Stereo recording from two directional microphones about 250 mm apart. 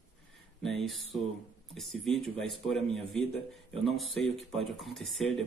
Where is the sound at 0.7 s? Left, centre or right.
Centre.